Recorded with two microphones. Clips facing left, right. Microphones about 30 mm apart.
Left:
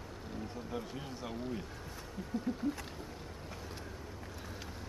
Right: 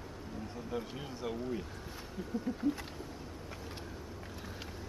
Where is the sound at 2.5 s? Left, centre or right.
Left.